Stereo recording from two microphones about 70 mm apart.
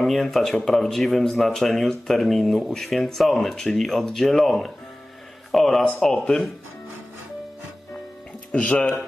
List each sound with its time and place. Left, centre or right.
0.0 s speech: centre
8.5 s speech: centre